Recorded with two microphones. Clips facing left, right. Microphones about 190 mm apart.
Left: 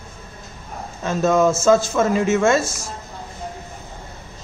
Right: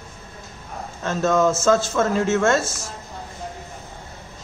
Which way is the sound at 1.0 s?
10° left (ahead or behind).